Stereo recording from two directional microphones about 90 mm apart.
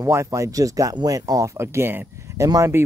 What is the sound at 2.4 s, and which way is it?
Speech, 40° right (ahead or behind).